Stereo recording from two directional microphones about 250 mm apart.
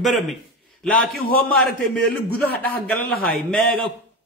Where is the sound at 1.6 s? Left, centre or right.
Centre.